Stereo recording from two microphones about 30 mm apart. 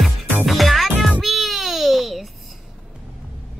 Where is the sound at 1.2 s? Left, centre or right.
Centre.